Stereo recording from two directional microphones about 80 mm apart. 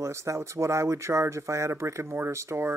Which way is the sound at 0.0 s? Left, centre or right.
Right.